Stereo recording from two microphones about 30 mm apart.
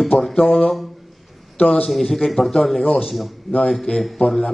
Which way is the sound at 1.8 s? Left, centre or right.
Centre.